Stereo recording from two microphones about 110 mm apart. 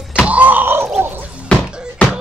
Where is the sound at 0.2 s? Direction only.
15° right (ahead or behind).